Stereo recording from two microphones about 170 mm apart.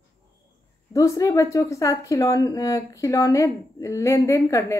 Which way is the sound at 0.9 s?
20° left (ahead or behind).